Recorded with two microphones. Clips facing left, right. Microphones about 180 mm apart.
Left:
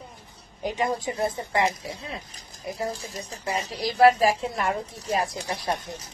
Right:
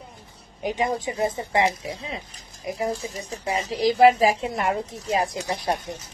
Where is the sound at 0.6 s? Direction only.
15° right (ahead or behind).